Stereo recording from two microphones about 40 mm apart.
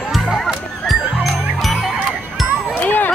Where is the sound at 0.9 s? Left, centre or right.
Centre.